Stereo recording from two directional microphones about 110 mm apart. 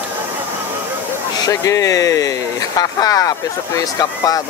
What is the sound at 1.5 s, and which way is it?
Speech, 30° left (ahead or behind).